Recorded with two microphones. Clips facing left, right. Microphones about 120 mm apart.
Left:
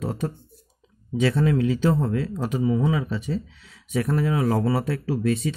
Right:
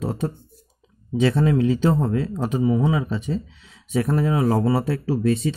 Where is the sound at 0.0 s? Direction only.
30° right (ahead or behind).